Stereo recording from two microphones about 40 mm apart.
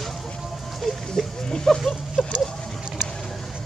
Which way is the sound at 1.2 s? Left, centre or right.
Centre.